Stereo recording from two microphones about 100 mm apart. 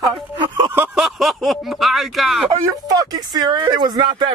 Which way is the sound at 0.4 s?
50° right (ahead or behind).